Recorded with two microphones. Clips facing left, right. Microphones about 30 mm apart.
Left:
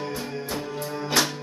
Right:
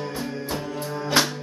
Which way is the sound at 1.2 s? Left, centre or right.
Right.